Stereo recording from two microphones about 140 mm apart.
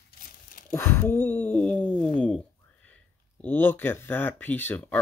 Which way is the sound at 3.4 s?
15° left (ahead or behind).